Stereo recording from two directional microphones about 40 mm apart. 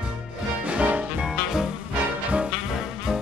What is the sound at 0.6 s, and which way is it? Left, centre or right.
Music, right.